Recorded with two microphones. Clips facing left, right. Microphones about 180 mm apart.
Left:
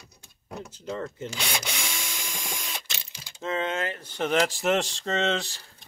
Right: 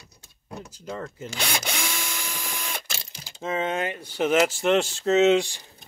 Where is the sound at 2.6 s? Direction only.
55° right (ahead or behind).